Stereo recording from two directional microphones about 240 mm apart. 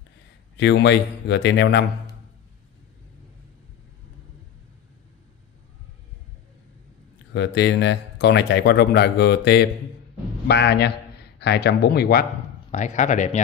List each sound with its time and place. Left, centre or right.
0.6 s speech: left
7.3 s a man's voice: left